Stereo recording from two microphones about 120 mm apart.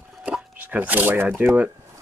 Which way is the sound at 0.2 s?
10° right (ahead or behind).